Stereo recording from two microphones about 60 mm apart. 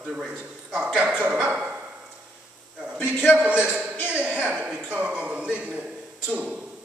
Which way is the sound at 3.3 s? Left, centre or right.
Right.